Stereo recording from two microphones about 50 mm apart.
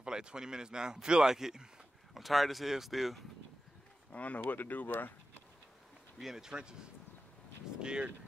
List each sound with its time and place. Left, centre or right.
0.0 s a man's voice: centre
4.1 s speech: left
6.1 s a man's voice: centre